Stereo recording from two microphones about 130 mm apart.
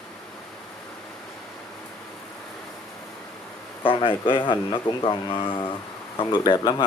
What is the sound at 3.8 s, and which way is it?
A man's voice, 40° left (ahead or behind).